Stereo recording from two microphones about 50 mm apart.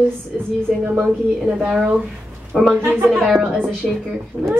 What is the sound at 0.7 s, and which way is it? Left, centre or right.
A man's voice, centre.